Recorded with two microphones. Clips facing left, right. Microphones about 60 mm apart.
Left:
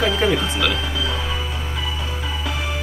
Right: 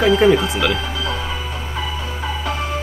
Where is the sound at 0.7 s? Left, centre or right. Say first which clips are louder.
Right 1 dB; right.